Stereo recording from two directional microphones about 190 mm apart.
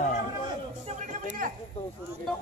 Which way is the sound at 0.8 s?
40° right (ahead or behind).